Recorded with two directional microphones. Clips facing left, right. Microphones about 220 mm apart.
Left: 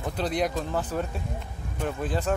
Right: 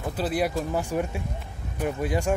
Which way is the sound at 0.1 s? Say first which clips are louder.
Right 1 dB; 5° right (ahead or behind).